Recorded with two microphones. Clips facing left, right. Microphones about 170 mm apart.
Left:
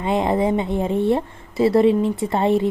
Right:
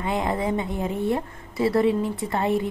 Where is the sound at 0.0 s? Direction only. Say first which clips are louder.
Left 6 dB; 25° left (ahead or behind).